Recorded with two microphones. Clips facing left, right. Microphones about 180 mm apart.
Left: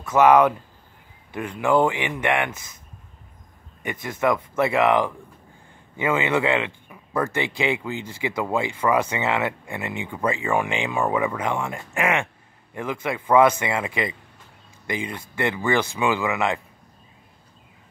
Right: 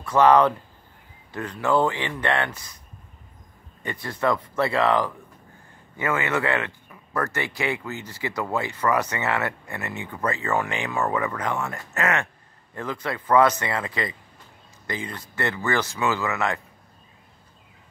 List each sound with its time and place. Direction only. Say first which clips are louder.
0.0 s speech: left 1 dB; 5° left (ahead or behind)
3.8 s speech: left 2 dB; 20° left (ahead or behind)